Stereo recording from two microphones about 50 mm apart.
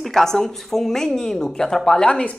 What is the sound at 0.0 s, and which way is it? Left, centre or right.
Speech, centre.